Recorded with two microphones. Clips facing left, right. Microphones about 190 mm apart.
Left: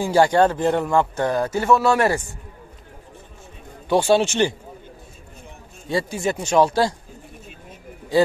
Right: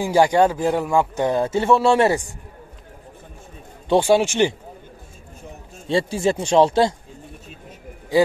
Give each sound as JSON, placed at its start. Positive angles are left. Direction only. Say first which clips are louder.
{"t": 0.0, "sound": "speech", "louder": "even", "side_deg": -15}
{"t": 3.9, "sound": "speech", "louder": "right 1 dB", "side_deg": -15}
{"t": 5.9, "sound": "speech", "louder": "right 3 dB", "side_deg": -30}